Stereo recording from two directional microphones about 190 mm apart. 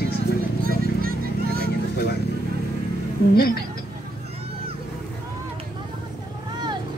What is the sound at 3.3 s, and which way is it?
Speech, 55° left (ahead or behind).